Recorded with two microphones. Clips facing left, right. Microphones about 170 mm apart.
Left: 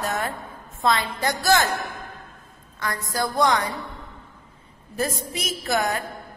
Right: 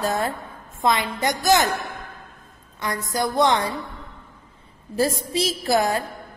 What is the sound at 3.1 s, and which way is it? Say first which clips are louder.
Speech: right 2 dB; 20° right (ahead or behind).